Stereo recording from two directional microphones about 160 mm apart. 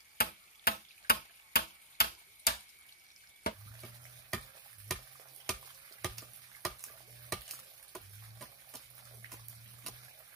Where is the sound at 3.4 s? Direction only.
75° left (ahead or behind).